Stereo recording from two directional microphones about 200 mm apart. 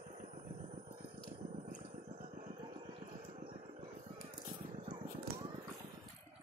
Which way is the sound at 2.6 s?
25° right (ahead or behind).